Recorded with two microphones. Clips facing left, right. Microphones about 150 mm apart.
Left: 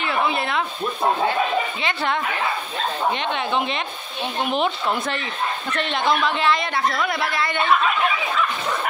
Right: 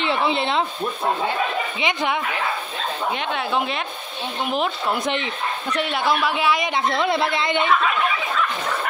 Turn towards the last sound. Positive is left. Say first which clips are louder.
# right 2 dB
turn(degrees=-20)  # may be behind; listen again after turning